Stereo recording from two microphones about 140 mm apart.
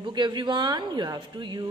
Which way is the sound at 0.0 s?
35° right (ahead or behind).